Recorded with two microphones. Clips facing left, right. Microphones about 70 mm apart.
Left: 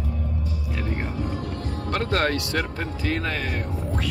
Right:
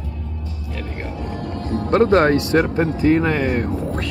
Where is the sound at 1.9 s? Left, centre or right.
Right.